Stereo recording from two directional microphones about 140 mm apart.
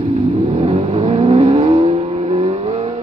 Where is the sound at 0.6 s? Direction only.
45° right (ahead or behind).